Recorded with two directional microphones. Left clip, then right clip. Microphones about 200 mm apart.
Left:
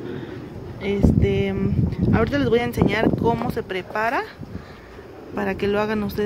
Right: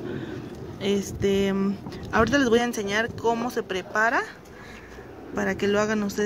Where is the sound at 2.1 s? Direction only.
15° right (ahead or behind).